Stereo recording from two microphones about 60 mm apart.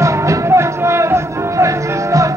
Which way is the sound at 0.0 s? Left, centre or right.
Right.